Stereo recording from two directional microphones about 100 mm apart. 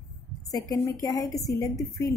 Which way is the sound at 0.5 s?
40° left (ahead or behind).